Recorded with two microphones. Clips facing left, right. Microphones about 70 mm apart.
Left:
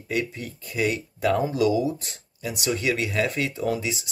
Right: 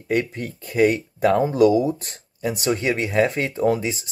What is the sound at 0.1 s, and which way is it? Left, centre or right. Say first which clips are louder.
Speech: right 5 dB; right.